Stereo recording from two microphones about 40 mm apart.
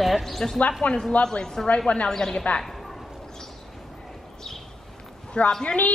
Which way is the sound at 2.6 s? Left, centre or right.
Centre.